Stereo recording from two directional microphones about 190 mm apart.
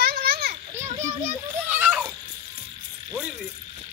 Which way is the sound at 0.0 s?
50° right (ahead or behind).